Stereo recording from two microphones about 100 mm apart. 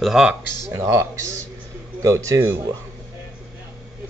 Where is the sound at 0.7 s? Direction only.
30° right (ahead or behind).